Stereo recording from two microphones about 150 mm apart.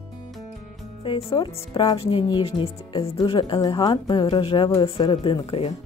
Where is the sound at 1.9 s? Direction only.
40° left (ahead or behind).